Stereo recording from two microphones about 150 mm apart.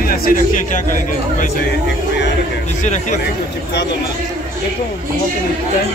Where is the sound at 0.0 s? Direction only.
75° left (ahead or behind).